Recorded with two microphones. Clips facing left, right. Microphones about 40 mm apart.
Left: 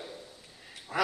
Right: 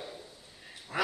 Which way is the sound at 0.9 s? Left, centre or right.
Centre.